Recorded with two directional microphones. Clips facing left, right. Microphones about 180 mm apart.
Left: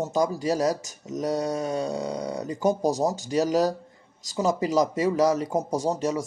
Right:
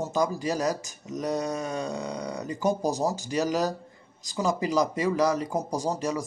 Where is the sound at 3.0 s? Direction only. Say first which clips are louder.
Left 2 dB; 10° left (ahead or behind).